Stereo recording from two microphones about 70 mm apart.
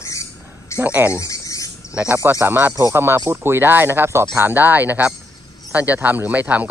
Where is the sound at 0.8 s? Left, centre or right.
Right.